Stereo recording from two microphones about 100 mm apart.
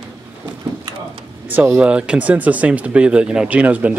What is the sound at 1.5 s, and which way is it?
Speech, 20° right (ahead or behind).